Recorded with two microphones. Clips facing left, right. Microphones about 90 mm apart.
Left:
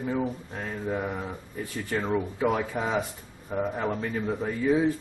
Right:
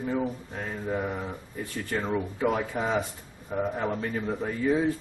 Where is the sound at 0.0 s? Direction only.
Centre (ahead or behind).